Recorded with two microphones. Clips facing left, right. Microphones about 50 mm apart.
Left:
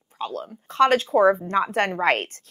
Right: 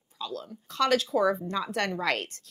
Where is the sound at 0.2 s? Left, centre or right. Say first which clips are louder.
Left 6 dB; left.